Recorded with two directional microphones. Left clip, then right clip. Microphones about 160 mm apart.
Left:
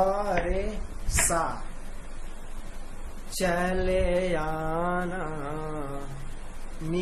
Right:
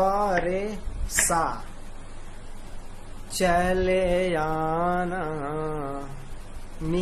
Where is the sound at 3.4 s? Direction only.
40° right (ahead or behind).